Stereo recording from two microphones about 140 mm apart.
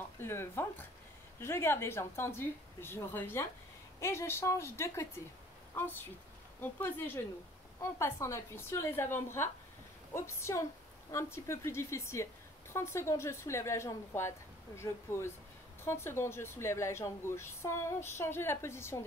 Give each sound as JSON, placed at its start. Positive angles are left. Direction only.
{"t": 0.2, "sound": "a woman's voice", "side_deg": 15}